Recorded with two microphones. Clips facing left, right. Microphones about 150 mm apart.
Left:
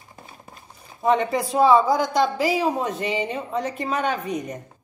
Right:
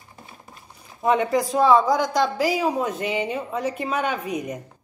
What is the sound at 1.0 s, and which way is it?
A woman's voice, 5° right (ahead or behind).